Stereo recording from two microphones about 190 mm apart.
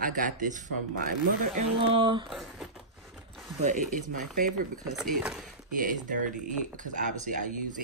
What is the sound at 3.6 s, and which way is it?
Speech, 40° right (ahead or behind).